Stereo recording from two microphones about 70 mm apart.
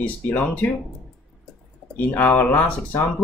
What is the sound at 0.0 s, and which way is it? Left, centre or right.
Speech, left.